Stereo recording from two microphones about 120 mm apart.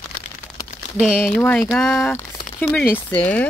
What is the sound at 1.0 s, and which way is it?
Speech, 5° right (ahead or behind).